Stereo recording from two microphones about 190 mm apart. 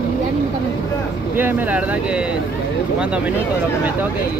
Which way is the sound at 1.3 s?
10° right (ahead or behind).